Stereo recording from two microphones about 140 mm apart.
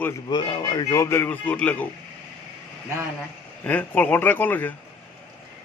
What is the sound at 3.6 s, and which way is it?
A man's voice, 10° left (ahead or behind).